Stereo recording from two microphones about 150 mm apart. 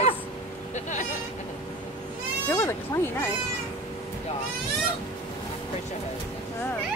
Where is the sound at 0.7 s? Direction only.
55° left (ahead or behind).